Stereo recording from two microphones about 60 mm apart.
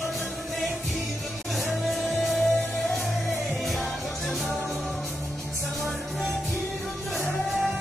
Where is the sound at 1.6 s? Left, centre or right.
Centre.